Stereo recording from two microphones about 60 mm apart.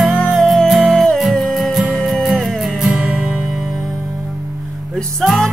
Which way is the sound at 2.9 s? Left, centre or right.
Right.